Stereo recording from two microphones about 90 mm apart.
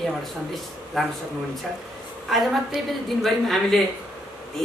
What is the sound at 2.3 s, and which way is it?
Speech, centre (ahead or behind).